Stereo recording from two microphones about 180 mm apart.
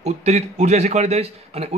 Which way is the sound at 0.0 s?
40° right (ahead or behind).